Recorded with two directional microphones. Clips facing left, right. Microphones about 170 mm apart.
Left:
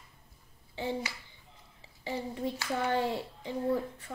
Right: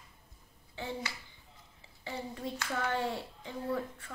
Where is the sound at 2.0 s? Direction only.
20° left (ahead or behind).